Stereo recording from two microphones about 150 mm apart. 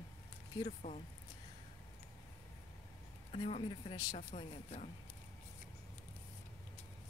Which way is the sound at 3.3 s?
40° left (ahead or behind).